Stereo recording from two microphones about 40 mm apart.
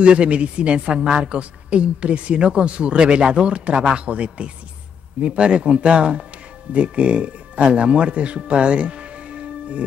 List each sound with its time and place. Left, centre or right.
0.0 s a woman's voice: right